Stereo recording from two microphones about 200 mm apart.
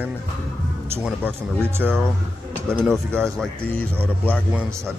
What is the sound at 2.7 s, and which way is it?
A man's voice, 5° left (ahead or behind).